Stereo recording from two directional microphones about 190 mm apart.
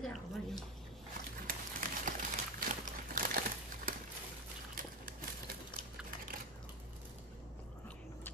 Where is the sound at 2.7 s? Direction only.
45° right (ahead or behind).